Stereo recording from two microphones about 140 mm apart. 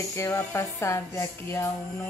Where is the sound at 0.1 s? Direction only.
20° left (ahead or behind).